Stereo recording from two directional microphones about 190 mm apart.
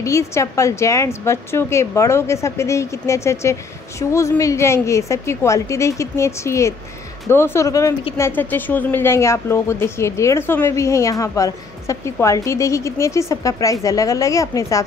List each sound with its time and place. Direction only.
0.0 s a woman's voice: 15° left (ahead or behind)